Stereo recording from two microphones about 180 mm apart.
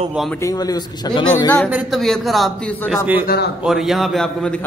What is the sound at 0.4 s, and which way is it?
Speech, 20° left (ahead or behind).